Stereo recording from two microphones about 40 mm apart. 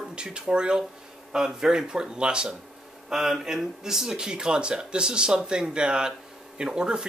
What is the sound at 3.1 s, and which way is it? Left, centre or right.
Speech, centre.